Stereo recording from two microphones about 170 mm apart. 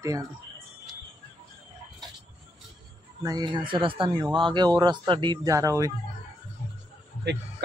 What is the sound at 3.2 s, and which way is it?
Speech, 25° right (ahead or behind).